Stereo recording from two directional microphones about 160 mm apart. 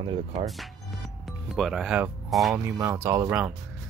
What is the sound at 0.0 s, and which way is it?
Speech, 30° right (ahead or behind).